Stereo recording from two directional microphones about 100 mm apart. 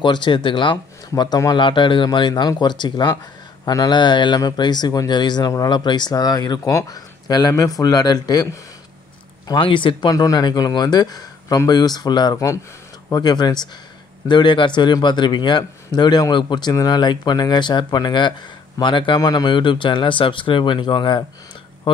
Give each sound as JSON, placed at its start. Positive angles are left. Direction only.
{"t": 0.0, "sound": "a man's voice", "side_deg": 50}
{"t": 9.6, "sound": "speech", "side_deg": 60}
{"t": 10.1, "sound": "a man's voice", "side_deg": 35}